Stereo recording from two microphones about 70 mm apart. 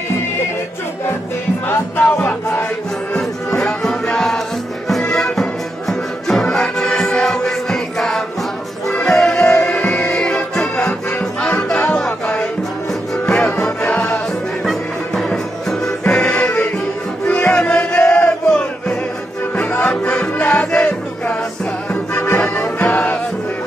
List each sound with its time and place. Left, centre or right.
1.7 s music: left
3.2 s music: centre
16.1 s music: centre
18.1 s crowd: centre
19.8 s music: centre
22.1 s music: left